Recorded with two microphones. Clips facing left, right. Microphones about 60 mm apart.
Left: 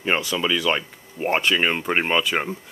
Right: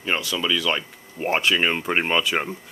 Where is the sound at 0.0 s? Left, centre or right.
Centre.